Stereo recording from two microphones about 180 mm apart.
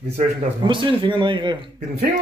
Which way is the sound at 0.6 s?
25° right (ahead or behind).